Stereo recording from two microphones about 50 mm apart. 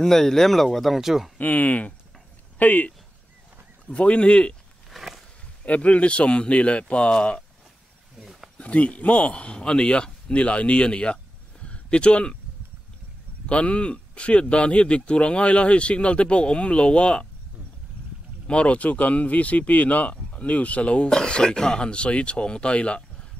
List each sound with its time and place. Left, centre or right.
0.0 s speech: centre
1.4 s speech: left
4.8 s a sound: centre
5.7 s speech: left
8.5 s speech: left
11.6 s a sound: left
13.5 s speech: left
18.5 s speech: left